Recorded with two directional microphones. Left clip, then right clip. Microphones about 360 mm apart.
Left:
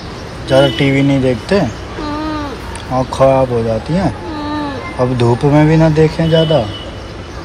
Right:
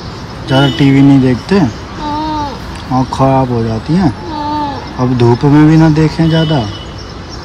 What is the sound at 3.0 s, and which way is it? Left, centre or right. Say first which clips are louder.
Speech: left 1 dB; centre.